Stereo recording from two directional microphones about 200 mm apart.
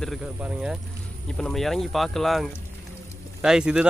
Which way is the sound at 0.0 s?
Centre (ahead or behind).